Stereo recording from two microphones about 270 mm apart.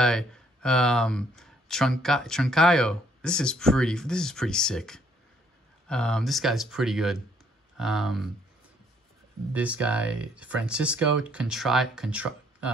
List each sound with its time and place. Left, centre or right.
0.0 s speech: centre
9.5 s speech: centre